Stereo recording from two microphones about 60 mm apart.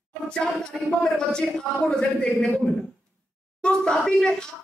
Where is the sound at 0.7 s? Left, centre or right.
Centre.